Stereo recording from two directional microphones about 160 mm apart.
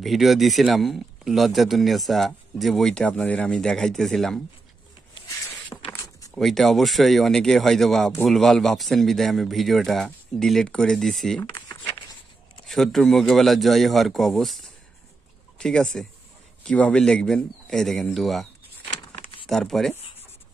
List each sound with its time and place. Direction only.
0.0 s a man's voice: centre (ahead or behind)
5.7 s a sound: 25° left (ahead or behind)
6.3 s a man's voice: centre (ahead or behind)
12.6 s a man's voice: centre (ahead or behind)